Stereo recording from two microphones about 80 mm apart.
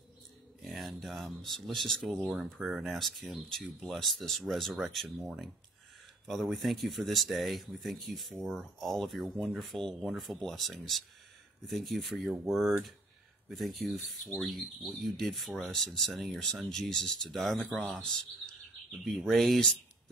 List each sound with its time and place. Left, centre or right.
0.6 s speech: centre